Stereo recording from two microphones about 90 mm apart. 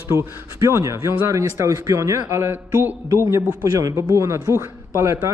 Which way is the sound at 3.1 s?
30° right (ahead or behind).